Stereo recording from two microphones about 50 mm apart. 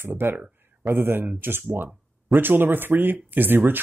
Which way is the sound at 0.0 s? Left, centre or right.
Right.